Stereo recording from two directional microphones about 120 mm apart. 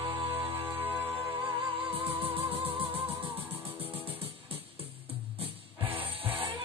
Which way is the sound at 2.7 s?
15° right (ahead or behind).